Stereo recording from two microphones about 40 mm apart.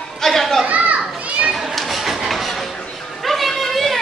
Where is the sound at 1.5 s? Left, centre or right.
Centre.